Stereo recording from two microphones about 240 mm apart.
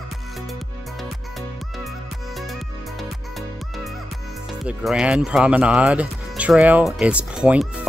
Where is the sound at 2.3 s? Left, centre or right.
Centre.